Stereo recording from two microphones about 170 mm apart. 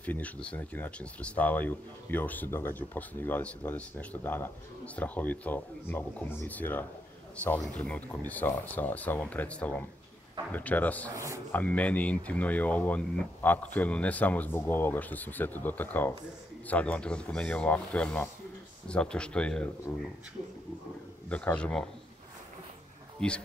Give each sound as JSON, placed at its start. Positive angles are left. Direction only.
{"t": 0.0, "sound": "speech", "side_deg": 10}
{"t": 11.1, "sound": "speech", "side_deg": -15}
{"t": 11.5, "sound": "speech", "side_deg": 10}
{"t": 21.3, "sound": "speech", "side_deg": 5}